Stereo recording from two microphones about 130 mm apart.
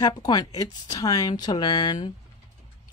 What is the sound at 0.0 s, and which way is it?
Speech, 30° left (ahead or behind).